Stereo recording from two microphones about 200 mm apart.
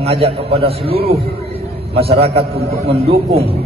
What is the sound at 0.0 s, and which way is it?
A man's voice, 30° right (ahead or behind).